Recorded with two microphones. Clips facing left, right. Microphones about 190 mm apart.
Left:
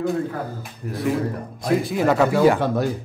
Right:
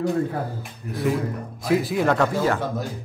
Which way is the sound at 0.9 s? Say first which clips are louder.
Left 1 dB; centre (ahead or behind).